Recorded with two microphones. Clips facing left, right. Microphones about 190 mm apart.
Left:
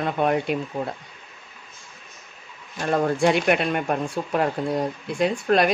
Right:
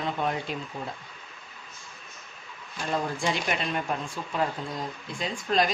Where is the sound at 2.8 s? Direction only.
60° left (ahead or behind).